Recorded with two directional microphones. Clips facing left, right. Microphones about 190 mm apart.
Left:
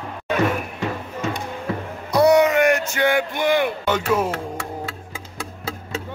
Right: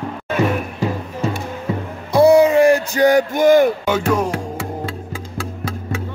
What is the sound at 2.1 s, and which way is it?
Music, 30° right (ahead or behind).